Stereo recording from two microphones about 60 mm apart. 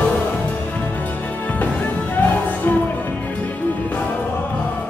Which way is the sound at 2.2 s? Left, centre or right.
Left.